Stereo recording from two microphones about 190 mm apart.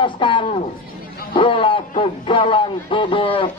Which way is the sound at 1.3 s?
25° left (ahead or behind).